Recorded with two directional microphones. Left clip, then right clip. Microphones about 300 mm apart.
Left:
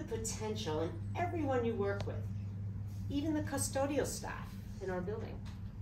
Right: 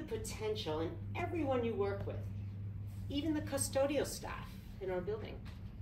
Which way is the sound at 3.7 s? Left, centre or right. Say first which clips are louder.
Right 1 dB; centre.